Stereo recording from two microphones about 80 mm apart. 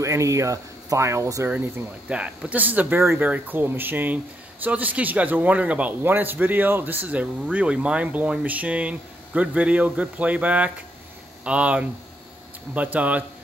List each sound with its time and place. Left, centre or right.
0.0 s speech: right
2.0 s a man's voice: centre
3.0 s a man's voice: right; by 13.2 s centre